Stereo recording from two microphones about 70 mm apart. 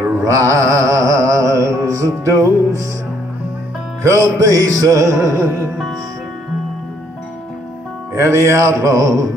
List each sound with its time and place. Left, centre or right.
0.2 s music: right
4.0 s music: right
8.1 s music: right